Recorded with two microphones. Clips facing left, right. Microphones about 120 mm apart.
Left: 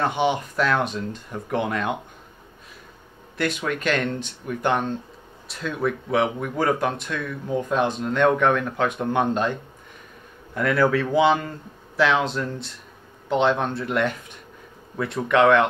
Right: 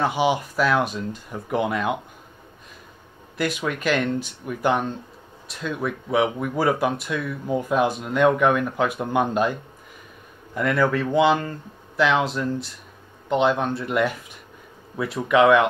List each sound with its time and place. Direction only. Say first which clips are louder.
0.0 s speech: right 1 dB; 5° right (ahead or behind)
3.3 s speech: even; 5° right (ahead or behind)